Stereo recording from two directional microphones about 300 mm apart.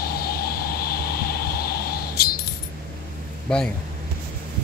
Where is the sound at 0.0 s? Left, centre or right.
Left.